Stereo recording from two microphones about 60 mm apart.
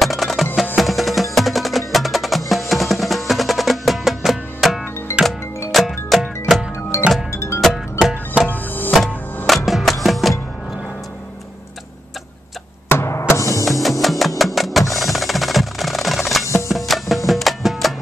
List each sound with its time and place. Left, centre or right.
0.0 s music: centre
0.7 s wood block: centre
5.1 s music: left
5.7 s music: centre
6.9 s music: left
8.5 s music: left
9.5 s music: centre
12.9 s music: left
13.3 s music: left
13.7 s music: centre
14.4 s percussion: centre
16.6 s music: centre